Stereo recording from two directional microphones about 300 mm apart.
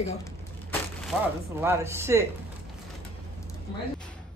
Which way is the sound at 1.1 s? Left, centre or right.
Centre.